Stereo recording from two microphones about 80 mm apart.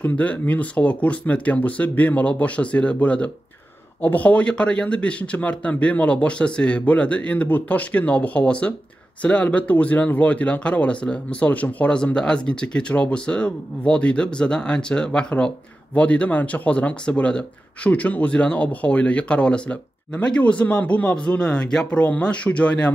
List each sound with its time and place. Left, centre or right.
0.0 s speech: centre